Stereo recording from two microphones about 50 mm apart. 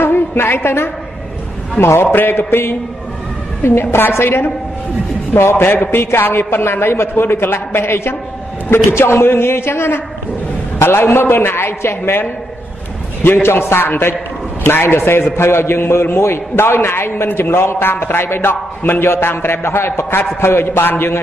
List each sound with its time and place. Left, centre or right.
0.0 s a woman's voice: left
3.8 s a man's voice: left
13.2 s a man's voice: left